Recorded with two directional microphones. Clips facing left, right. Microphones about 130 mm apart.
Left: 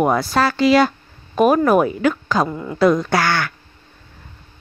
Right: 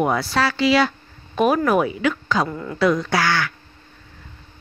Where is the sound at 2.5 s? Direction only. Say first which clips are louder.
Left 2 dB; 20° left (ahead or behind).